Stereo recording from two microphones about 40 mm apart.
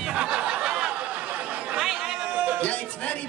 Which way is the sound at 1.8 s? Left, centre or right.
Centre.